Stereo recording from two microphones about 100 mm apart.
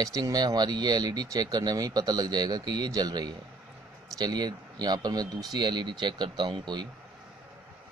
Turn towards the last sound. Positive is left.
turn(degrees=-50)  # may be behind; listen again after turning